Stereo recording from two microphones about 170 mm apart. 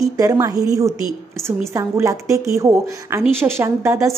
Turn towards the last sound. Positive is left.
turn(degrees=-15)  # may be behind; listen again after turning